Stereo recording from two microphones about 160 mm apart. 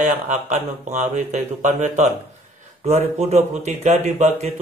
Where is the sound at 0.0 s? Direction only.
45° right (ahead or behind).